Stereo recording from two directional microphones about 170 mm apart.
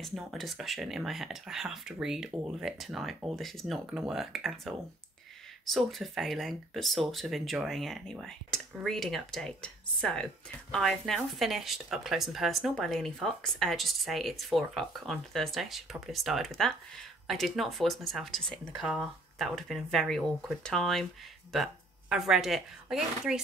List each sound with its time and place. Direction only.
0.0 s speech: centre (ahead or behind)